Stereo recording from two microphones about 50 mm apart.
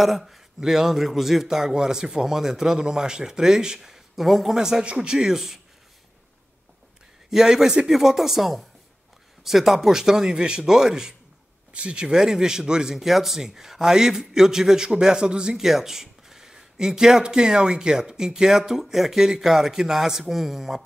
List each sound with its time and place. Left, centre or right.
0.0 s speech: centre
7.2 s speech: centre
11.7 s speech: right; by 20.8 s centre